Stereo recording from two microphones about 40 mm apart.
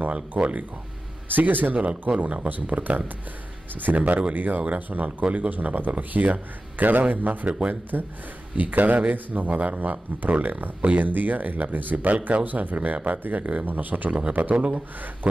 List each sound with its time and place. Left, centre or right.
0.4 s speech: right
1.3 s a man's voice: right
1.9 s a man's voice: right
7.9 s a man's voice: right